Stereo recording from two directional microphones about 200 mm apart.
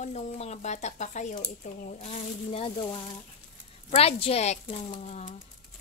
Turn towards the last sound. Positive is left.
turn(degrees=35)  # may be behind; listen again after turning